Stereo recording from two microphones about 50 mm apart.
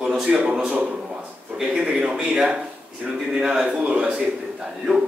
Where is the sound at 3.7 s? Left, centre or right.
Right.